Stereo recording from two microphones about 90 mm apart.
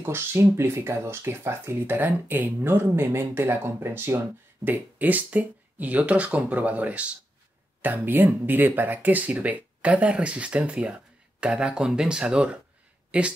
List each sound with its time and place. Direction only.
0.0 s speech: 25° right (ahead or behind); by 12.4 s 10° right (ahead or behind)